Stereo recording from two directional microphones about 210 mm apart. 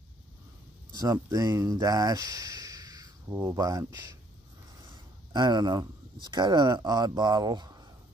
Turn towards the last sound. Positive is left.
turn(degrees=-20)  # may be behind; listen again after turning